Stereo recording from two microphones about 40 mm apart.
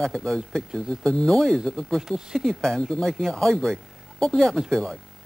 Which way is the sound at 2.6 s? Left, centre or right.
Centre.